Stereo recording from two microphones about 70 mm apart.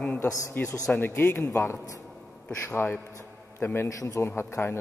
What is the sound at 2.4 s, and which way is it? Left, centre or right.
A man's voice, left.